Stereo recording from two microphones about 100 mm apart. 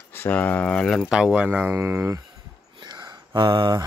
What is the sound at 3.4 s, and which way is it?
Speech, 55° right (ahead or behind).